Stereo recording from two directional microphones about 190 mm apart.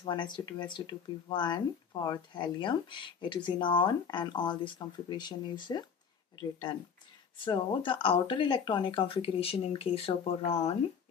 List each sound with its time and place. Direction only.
0.0 s speech: 25° left (ahead or behind)
7.4 s speech: 25° left (ahead or behind)